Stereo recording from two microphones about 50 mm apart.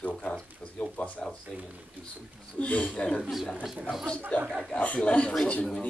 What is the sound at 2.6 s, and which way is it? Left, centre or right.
Speech, left.